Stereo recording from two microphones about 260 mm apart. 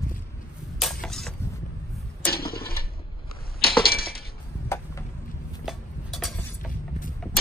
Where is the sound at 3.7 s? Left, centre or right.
Left.